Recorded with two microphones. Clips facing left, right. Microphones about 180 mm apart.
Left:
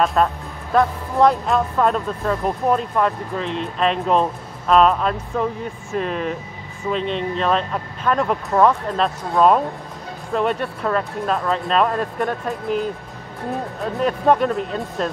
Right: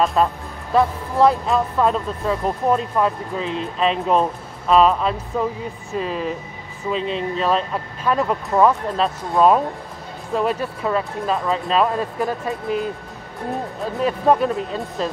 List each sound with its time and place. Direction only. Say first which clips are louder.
0.0 s speech: even; centre (ahead or behind)
14.0 s speech: even; centre (ahead or behind)